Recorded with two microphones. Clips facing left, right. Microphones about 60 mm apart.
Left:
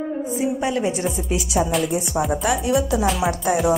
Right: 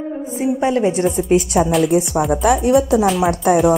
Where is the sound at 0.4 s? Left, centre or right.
Right.